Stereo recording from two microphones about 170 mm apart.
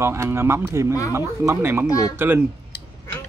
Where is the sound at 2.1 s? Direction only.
15° right (ahead or behind).